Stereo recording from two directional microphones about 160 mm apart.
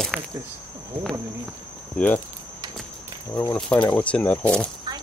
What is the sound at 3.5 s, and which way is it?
Speech, 5° left (ahead or behind).